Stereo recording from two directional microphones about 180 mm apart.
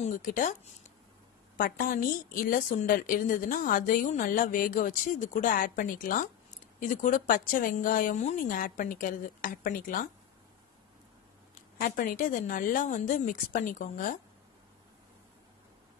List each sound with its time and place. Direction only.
0.0 s a woman's voice: 45° left (ahead or behind)
11.5 s a woman's voice: 50° left (ahead or behind)